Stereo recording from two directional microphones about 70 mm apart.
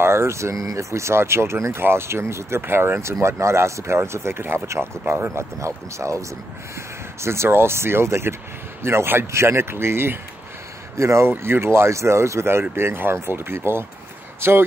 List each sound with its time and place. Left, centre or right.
0.0 s speech: right